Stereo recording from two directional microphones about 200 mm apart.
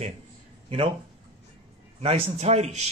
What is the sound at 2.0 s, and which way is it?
Speech, 30° right (ahead or behind).